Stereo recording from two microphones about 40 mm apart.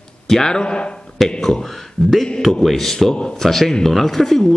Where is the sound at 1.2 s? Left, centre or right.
Centre.